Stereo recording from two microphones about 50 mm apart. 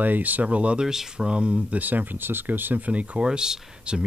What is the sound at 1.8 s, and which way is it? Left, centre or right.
Speech, right.